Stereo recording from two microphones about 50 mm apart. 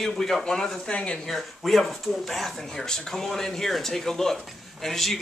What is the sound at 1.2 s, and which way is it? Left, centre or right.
Speech, centre.